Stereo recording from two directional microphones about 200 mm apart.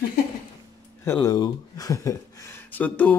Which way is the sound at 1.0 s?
15° left (ahead or behind).